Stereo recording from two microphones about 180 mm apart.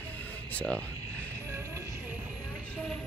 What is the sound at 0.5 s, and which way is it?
Speech, 5° left (ahead or behind).